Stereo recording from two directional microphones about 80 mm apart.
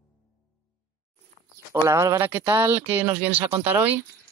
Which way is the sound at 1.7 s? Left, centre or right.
Right.